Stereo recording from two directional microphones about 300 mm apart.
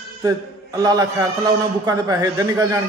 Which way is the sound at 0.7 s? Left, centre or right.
Centre.